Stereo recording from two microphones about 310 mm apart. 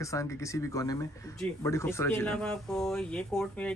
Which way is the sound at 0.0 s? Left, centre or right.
Centre.